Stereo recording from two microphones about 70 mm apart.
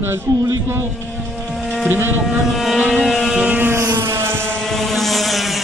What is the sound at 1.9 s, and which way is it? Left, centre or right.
Speech, right.